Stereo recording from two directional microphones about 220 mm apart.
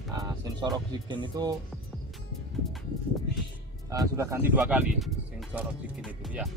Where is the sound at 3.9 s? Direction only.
15° right (ahead or behind).